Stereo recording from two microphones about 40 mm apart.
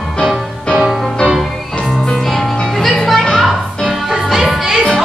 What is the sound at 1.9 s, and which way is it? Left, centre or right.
Music, centre.